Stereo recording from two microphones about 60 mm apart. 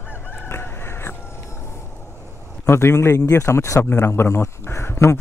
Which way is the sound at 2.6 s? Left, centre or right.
Left.